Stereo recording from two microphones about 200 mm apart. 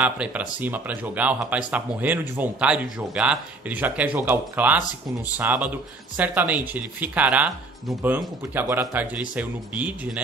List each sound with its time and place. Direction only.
0.0 s speech: 5° right (ahead or behind)